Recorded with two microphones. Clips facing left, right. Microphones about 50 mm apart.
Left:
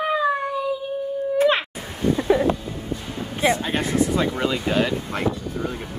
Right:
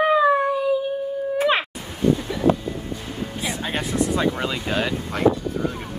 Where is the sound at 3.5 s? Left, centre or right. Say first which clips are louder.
Left 7 dB; centre.